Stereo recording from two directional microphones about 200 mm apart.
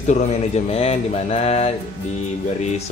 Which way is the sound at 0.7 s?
30° left (ahead or behind).